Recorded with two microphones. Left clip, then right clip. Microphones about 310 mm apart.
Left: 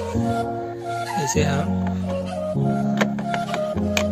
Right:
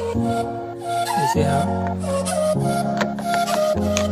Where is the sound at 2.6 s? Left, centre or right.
Right.